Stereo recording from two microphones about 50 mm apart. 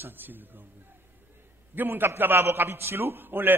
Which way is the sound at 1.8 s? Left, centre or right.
Right.